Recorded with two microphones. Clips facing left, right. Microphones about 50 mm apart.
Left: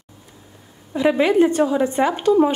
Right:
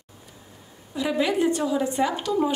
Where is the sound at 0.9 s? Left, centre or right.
Left.